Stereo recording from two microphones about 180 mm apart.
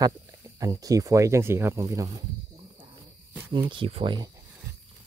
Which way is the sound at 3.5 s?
30° right (ahead or behind).